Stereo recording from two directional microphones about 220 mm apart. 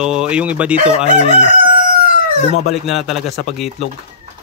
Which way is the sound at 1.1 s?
30° left (ahead or behind).